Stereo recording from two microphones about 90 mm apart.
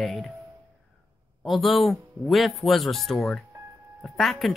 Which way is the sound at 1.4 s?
Centre (ahead or behind).